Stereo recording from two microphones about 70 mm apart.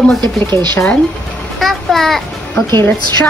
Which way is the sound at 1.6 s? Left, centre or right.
Centre.